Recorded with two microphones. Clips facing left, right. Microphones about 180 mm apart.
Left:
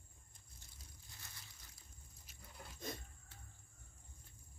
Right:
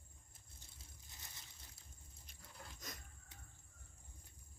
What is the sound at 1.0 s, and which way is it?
Crunch, 20° right (ahead or behind).